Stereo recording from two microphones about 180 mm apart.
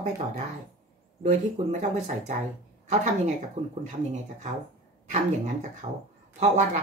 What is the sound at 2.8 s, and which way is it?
Speech, 40° right (ahead or behind).